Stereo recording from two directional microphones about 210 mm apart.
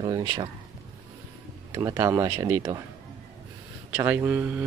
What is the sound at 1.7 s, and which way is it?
Speech, 15° right (ahead or behind).